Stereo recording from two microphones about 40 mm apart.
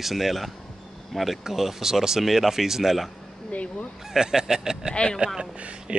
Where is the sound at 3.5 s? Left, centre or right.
Left.